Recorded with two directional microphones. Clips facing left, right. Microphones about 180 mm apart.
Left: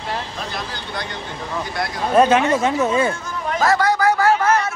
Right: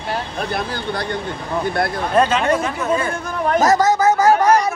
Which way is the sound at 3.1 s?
60° right (ahead or behind).